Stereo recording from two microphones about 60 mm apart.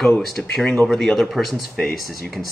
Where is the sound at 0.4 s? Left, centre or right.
Centre.